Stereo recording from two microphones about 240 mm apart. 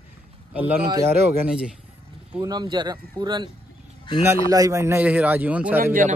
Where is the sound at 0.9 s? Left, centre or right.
Right.